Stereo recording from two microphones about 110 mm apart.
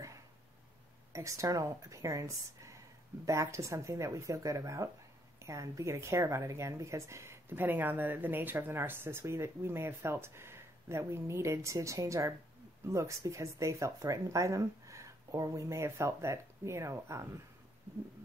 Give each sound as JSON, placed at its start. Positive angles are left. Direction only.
{"t": 1.1, "sound": "speech", "side_deg": -30}